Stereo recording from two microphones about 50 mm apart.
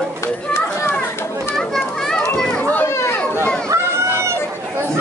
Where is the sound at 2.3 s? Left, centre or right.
Centre.